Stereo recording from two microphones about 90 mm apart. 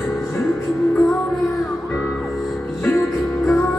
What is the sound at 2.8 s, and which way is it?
Music, 5° left (ahead or behind).